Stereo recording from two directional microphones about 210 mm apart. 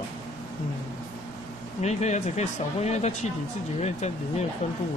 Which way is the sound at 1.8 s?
30° left (ahead or behind).